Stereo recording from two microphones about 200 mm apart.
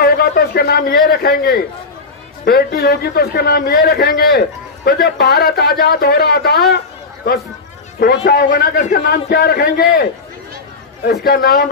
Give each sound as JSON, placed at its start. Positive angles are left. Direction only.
{"t": 0.0, "sound": "a sound", "side_deg": 50}
{"t": 1.0, "sound": "a man's voice", "side_deg": 50}
{"t": 8.0, "sound": "a man's voice", "side_deg": 50}
{"t": 11.1, "sound": "a man's voice", "side_deg": 50}